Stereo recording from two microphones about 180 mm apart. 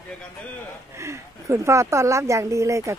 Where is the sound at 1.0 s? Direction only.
15° right (ahead or behind).